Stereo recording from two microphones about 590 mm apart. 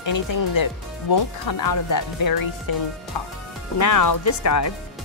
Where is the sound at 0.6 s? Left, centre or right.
Left.